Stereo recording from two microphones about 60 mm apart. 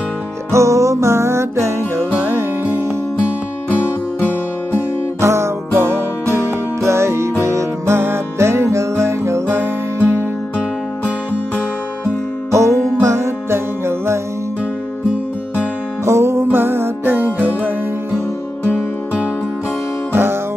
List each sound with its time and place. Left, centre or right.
0.5 s music: right
5.2 s music: right
12.4 s music: right
16.1 s music: right
20.1 s music: right